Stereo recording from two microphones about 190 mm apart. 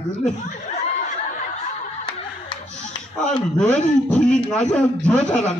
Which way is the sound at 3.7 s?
5° left (ahead or behind).